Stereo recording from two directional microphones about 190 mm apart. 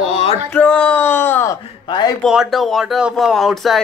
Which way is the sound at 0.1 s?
35° left (ahead or behind).